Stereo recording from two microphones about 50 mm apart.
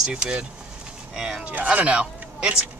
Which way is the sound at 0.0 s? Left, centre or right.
Centre.